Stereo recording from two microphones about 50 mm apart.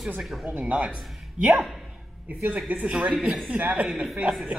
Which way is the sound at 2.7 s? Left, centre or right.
Right.